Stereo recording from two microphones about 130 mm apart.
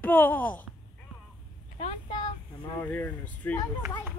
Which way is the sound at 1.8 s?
40° left (ahead or behind).